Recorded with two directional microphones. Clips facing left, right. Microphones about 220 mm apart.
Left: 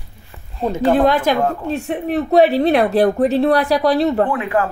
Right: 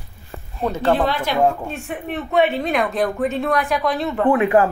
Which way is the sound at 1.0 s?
45° left (ahead or behind).